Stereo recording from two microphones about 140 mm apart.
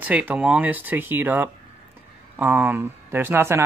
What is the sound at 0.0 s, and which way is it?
Speech, 10° right (ahead or behind).